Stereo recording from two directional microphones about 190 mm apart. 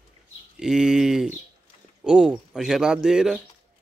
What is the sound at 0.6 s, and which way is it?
Speech, 5° right (ahead or behind).